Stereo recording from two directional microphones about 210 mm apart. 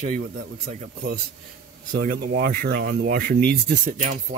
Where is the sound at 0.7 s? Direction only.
45° right (ahead or behind).